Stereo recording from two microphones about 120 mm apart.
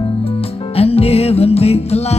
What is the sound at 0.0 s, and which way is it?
Music, 55° left (ahead or behind).